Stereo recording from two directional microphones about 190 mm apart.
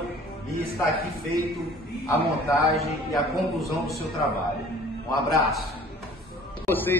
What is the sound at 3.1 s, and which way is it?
Speech, centre (ahead or behind).